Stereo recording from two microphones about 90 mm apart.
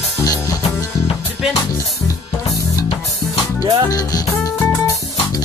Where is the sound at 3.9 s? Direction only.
45° left (ahead or behind).